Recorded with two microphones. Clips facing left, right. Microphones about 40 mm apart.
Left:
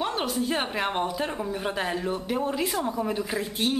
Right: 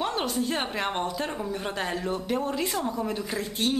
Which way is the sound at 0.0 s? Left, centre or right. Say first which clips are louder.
Even; centre.